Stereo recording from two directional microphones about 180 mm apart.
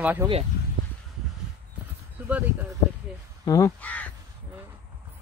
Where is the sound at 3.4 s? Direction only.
20° left (ahead or behind).